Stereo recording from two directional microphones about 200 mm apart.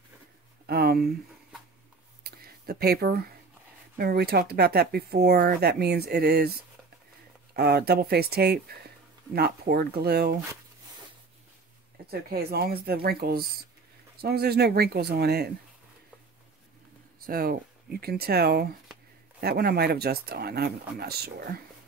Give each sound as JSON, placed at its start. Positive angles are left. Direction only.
{"t": 0.7, "sound": "speech", "side_deg": -50}
{"t": 2.2, "sound": "a sound", "side_deg": -50}
{"t": 4.0, "sound": "speech", "side_deg": -50}
{"t": 12.1, "sound": "speech", "side_deg": -50}
{"t": 17.3, "sound": "speech", "side_deg": -45}